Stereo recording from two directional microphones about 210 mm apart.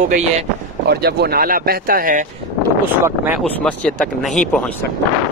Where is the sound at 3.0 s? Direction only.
5° right (ahead or behind).